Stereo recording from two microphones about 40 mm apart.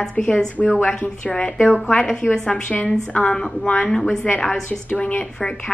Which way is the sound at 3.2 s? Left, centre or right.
Left.